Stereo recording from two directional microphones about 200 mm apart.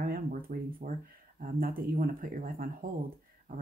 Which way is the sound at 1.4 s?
45° right (ahead or behind).